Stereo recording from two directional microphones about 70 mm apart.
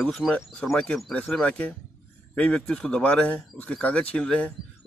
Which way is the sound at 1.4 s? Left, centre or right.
Centre.